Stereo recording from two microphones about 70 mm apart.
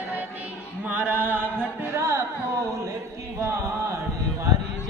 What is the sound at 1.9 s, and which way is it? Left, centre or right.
Music, right.